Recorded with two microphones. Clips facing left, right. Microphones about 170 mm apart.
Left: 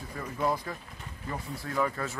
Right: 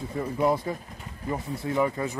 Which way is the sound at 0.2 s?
20° right (ahead or behind).